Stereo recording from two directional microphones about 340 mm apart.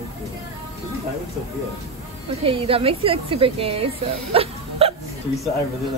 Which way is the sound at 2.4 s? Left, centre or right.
Centre.